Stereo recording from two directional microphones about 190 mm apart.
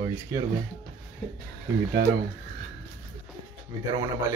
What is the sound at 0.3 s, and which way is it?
Speech, 15° right (ahead or behind).